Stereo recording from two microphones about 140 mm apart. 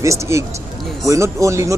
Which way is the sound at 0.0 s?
20° right (ahead or behind).